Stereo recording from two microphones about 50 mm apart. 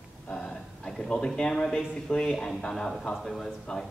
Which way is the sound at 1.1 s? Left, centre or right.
Centre.